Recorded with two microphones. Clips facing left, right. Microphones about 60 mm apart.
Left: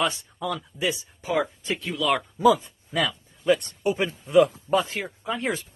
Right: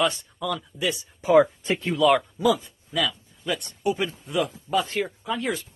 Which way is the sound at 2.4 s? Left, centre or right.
Left.